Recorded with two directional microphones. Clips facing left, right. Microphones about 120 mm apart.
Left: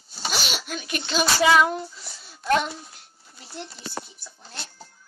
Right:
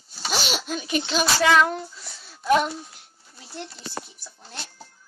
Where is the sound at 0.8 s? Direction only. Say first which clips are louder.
Right 1 dB; centre (ahead or behind).